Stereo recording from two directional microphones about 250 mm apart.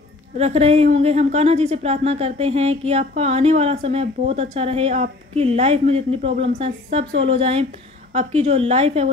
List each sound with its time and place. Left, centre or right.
0.4 s a woman's voice: right